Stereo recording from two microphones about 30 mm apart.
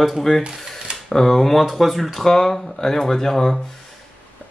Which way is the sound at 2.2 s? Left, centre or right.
Centre.